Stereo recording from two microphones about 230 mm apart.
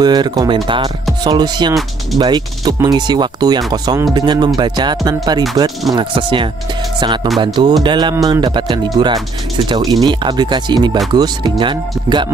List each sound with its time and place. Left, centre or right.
0.0 s speech: centre